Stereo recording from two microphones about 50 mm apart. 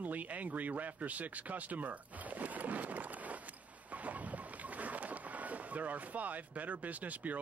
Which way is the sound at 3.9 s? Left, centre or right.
Right.